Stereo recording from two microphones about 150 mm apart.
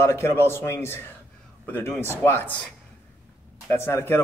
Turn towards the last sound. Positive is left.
turn(degrees=15)  # may be behind; listen again after turning